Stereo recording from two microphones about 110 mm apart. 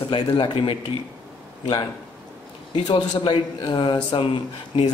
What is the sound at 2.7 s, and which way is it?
A man's voice, 50° left (ahead or behind).